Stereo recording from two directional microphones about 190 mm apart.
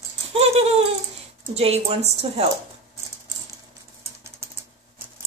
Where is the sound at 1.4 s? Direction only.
30° right (ahead or behind).